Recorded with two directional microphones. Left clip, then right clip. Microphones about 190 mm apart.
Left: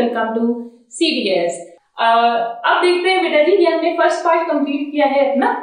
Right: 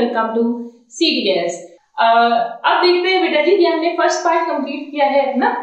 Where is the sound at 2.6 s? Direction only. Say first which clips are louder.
Even; 15° right (ahead or behind).